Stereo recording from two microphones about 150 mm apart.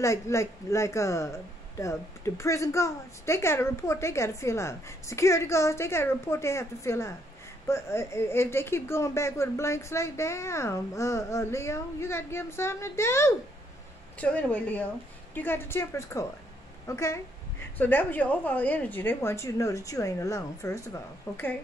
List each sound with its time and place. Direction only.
0.0 s speech: 20° left (ahead or behind)